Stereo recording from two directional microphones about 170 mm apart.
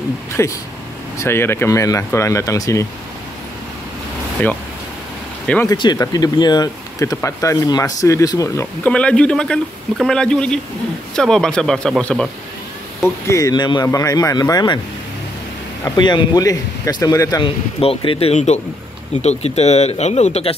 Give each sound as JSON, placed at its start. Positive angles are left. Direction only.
{"t": 0.4, "sound": "speech", "side_deg": 15}
{"t": 5.7, "sound": "speech", "side_deg": 25}
{"t": 8.8, "sound": "a man's voice", "side_deg": 5}
{"t": 13.0, "sound": "speech", "side_deg": 20}
{"t": 15.8, "sound": "speech", "side_deg": 25}
{"t": 17.7, "sound": "speech", "side_deg": 35}